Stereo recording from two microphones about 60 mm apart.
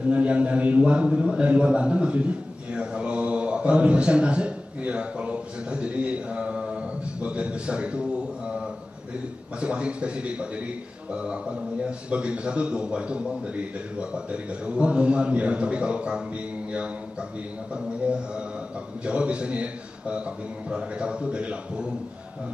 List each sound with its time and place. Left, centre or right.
0.0 s a man's voice: right
18.0 s a man's voice: centre